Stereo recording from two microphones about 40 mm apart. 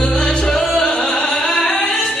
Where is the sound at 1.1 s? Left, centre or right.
Left.